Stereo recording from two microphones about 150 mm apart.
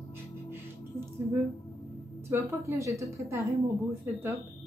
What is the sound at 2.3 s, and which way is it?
Speech, 20° right (ahead or behind).